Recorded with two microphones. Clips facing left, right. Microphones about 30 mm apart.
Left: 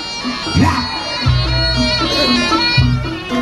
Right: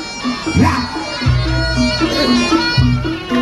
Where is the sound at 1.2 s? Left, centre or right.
Left.